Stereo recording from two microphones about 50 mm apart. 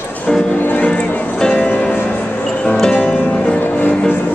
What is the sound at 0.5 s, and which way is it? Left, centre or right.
Music, left.